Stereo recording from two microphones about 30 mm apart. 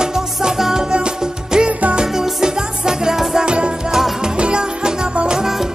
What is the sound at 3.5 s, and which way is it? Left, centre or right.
Music, right.